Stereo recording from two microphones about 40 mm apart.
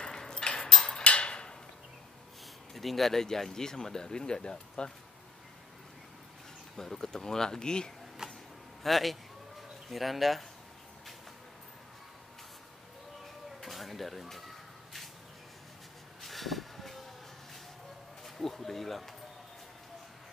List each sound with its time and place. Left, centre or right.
0.0 s a sound: centre
1.0 s tick-tock: left
2.7 s speech: centre; by 4.9 s left
6.8 s speech: centre
8.8 s speech: centre
13.6 s a sound: centre
16.2 s vehicle: centre
18.2 s speech: centre